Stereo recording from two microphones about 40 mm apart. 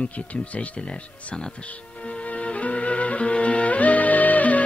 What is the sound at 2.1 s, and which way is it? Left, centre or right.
Music, left.